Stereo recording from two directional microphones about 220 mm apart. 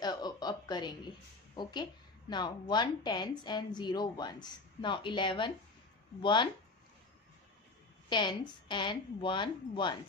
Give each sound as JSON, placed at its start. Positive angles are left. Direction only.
{"t": 0.0, "sound": "a woman's voice", "side_deg": 20}
{"t": 8.1, "sound": "a woman's voice", "side_deg": 20}